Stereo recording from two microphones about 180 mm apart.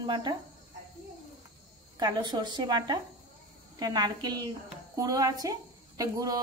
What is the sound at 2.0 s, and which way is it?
A woman's voice, 25° right (ahead or behind).